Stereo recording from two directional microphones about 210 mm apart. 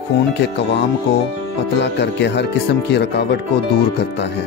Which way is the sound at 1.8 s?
55° left (ahead or behind).